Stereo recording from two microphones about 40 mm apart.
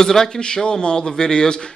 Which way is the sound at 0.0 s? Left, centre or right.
Centre.